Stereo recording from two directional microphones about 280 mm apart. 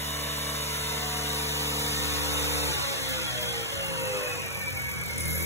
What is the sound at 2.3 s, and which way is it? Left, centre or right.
Vehicle, centre.